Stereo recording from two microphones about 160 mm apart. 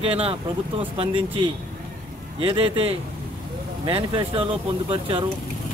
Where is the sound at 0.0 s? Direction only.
35° right (ahead or behind).